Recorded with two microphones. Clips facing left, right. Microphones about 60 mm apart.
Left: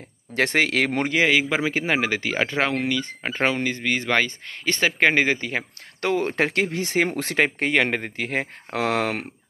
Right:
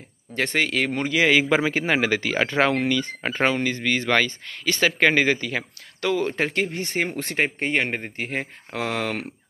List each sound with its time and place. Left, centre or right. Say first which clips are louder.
0.3 s speech: left 2 dB; left
1.2 s speech: right 3 dB; centre; by 5.7 s left
5.9 s speech: even; left
6.3 s speech: left 2 dB; left